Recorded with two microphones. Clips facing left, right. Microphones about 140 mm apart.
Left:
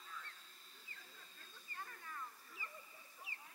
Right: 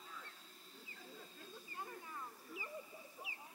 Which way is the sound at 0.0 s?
15° right (ahead or behind).